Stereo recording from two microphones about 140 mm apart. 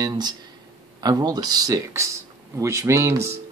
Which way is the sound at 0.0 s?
30° right (ahead or behind).